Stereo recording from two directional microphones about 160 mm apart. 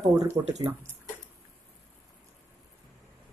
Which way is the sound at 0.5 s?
45° right (ahead or behind).